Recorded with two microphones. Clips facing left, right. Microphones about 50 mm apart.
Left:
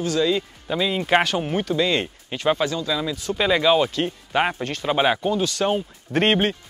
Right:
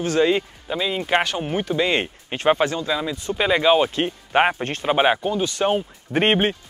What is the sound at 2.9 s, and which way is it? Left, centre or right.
Speech, right.